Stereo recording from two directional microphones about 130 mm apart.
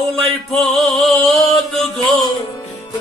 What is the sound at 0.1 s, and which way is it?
Music, centre (ahead or behind).